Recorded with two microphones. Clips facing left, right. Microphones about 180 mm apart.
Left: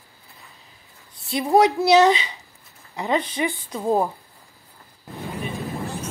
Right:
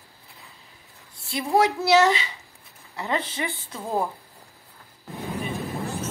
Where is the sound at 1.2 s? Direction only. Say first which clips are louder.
Left 5 dB; 20° left (ahead or behind).